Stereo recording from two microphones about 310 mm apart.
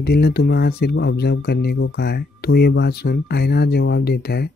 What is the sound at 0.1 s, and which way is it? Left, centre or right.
Speech, left.